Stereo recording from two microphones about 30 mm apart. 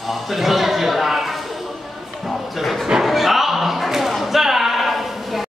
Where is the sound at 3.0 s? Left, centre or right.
Centre.